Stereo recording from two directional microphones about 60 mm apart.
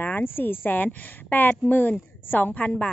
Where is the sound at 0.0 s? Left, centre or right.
Left.